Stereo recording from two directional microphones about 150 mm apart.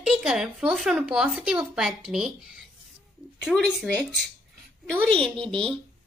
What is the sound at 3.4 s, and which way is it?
A woman's voice, 5° left (ahead or behind).